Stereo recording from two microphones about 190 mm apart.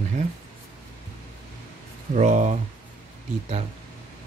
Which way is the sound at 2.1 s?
40° right (ahead or behind).